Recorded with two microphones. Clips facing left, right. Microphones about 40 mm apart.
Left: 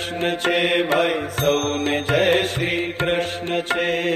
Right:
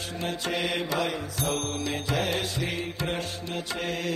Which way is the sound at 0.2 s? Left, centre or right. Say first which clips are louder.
Left 10 dB; left.